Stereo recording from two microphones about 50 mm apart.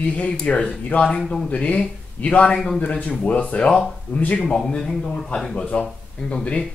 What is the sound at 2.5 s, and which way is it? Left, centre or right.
Speech, centre.